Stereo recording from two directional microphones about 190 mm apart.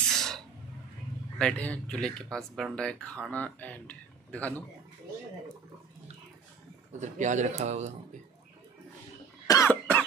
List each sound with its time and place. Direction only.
0.1 s a sound: centre (ahead or behind)
1.4 s speech: 5° left (ahead or behind)
7.0 s speech: 40° right (ahead or behind)
9.5 s cough: 15° left (ahead or behind)